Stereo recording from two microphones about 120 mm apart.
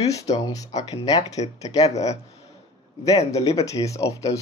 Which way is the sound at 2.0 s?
65° left (ahead or behind).